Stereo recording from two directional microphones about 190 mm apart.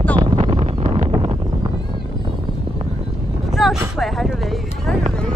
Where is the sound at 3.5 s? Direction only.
Centre (ahead or behind).